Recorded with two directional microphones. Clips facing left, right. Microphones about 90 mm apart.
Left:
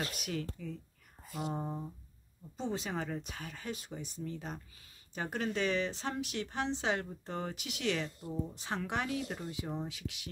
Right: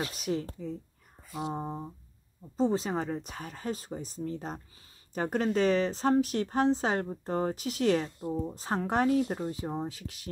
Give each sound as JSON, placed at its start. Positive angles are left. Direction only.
{"t": 0.0, "sound": "speech", "side_deg": -35}
{"t": 1.5, "sound": "a sound", "side_deg": -30}
{"t": 2.5, "sound": "speech", "side_deg": -35}